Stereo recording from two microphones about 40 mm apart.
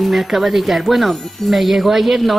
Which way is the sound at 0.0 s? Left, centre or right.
Centre.